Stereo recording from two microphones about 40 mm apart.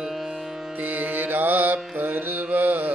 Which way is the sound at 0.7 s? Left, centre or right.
Right.